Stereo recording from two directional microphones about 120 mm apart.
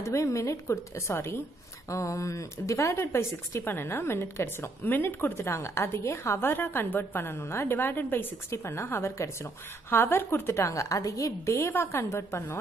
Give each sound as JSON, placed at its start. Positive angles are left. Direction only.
{"t": 0.0, "sound": "a woman's voice", "side_deg": 25}